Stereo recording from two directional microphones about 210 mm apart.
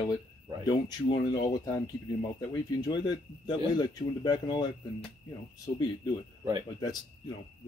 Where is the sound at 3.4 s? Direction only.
20° left (ahead or behind).